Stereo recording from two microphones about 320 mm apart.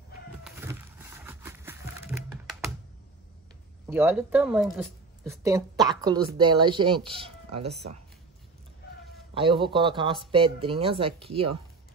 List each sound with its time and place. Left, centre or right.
0.4 s a sound: centre
3.8 s speech: centre
9.3 s speech: centre